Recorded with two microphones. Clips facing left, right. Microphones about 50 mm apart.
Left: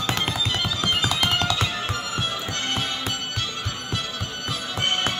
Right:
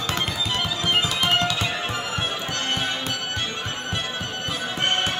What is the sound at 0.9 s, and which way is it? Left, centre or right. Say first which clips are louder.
Music: right 3 dB; right.